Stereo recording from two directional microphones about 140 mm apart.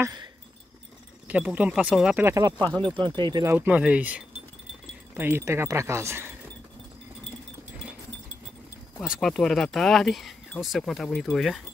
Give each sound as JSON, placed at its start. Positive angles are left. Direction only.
{"t": 1.2, "sound": "speech", "side_deg": -10}
{"t": 2.2, "sound": "speech", "side_deg": -25}
{"t": 3.4, "sound": "speech", "side_deg": -10}
{"t": 9.0, "sound": "speech", "side_deg": 0}